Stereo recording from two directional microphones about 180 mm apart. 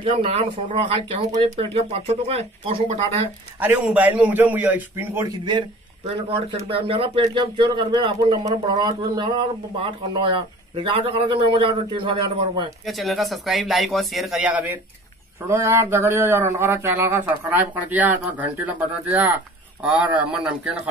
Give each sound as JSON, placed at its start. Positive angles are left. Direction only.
{"t": 0.1, "sound": "speech", "side_deg": -35}
{"t": 3.5, "sound": "speech", "side_deg": -10}
{"t": 12.8, "sound": "speech", "side_deg": 0}